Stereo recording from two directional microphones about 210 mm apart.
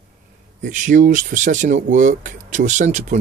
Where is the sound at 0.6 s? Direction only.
35° right (ahead or behind).